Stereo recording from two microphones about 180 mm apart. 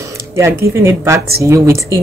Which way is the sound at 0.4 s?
15° right (ahead or behind).